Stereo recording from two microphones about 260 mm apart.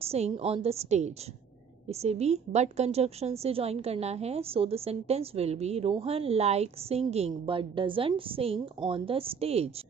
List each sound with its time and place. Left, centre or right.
0.0 s a woman's voice: right